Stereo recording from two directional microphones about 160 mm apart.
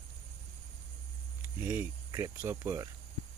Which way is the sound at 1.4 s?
15° right (ahead or behind).